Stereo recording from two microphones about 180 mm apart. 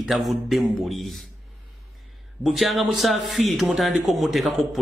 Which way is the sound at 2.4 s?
Centre (ahead or behind).